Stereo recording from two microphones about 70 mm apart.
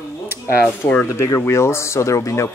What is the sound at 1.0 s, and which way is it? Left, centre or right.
Speech, left.